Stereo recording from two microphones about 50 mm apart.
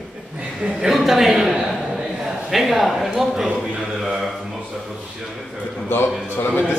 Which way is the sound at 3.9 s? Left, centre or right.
Centre.